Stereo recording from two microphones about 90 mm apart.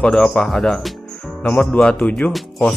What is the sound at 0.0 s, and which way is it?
Speech, 5° left (ahead or behind).